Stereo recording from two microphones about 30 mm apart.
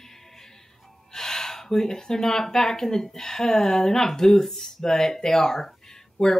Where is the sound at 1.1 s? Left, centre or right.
Centre.